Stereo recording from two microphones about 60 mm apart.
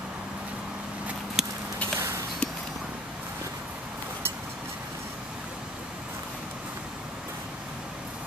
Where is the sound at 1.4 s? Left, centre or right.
Centre.